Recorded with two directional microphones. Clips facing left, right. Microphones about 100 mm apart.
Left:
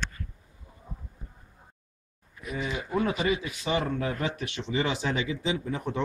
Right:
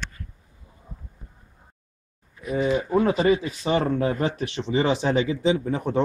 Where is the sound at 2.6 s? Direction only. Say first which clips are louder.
Right 8 dB; 35° right (ahead or behind).